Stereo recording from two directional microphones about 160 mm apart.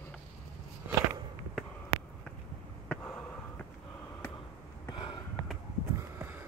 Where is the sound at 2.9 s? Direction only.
10° left (ahead or behind).